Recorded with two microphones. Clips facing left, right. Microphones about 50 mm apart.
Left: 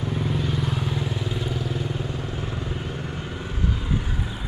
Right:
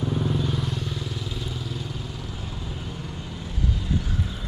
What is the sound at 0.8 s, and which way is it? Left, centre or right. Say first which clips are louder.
Vehicle: left 5 dB; left.